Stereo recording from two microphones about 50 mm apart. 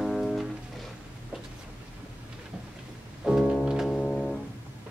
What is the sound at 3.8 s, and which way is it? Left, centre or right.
Music, centre.